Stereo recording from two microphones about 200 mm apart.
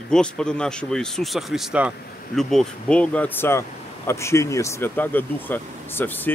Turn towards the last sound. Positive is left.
turn(degrees=10)  # may be behind; listen again after turning